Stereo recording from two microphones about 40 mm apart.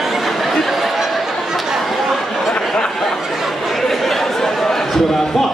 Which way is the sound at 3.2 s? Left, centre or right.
Centre.